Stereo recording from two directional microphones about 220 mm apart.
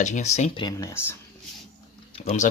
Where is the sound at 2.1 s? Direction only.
30° left (ahead or behind).